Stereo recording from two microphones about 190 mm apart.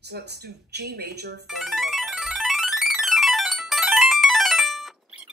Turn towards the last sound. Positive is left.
turn(degrees=0)  # may be behind; listen again after turning